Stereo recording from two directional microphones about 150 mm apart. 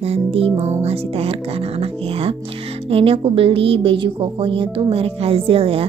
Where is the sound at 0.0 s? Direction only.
40° right (ahead or behind).